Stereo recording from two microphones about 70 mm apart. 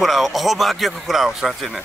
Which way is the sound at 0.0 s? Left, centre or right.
Centre.